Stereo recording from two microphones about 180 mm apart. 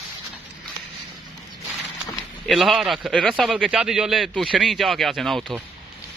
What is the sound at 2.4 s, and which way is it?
A man's voice, centre (ahead or behind).